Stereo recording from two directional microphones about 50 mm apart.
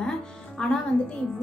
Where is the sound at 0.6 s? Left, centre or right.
Centre.